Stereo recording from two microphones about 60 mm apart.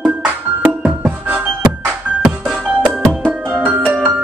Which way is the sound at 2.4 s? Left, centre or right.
Centre.